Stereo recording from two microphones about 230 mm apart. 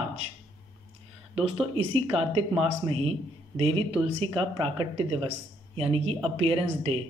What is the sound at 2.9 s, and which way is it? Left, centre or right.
Speech, right.